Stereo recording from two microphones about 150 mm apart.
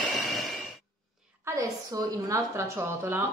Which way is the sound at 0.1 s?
Centre (ahead or behind).